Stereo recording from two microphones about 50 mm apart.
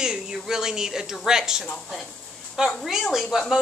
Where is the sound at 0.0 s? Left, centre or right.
Centre.